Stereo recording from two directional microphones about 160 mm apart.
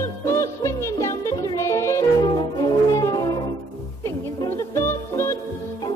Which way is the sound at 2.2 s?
30° left (ahead or behind).